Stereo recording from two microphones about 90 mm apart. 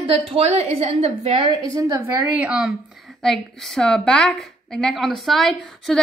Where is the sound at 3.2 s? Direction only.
5° left (ahead or behind).